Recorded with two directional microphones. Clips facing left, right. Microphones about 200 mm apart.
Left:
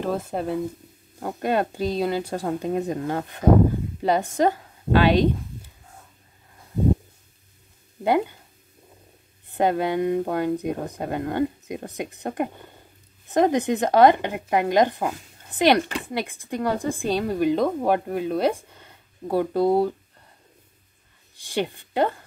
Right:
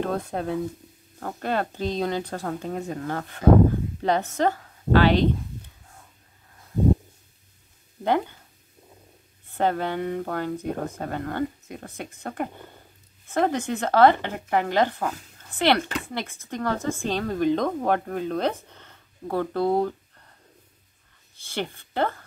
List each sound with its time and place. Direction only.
0.0 s speech: 5° left (ahead or behind)
1.2 s a woman's voice: 15° left (ahead or behind)
8.0 s speech: 10° left (ahead or behind)
9.5 s speech: 15° left (ahead or behind)
21.4 s speech: 15° left (ahead or behind)